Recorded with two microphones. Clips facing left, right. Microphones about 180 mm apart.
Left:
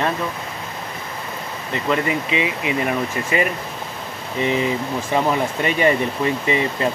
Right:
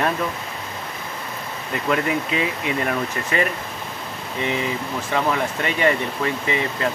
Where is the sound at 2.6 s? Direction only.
10° left (ahead or behind).